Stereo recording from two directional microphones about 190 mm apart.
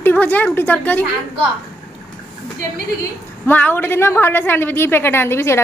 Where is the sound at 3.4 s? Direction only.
10° left (ahead or behind).